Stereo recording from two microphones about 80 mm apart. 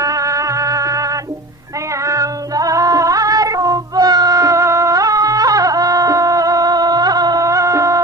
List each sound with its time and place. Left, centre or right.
0.0 s music: right